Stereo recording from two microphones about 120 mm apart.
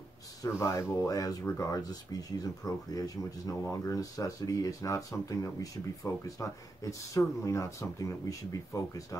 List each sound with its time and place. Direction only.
0.4 s speech: 25° left (ahead or behind)